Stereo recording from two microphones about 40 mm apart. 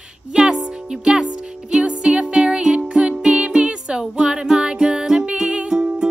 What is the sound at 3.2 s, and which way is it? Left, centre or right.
Music, centre.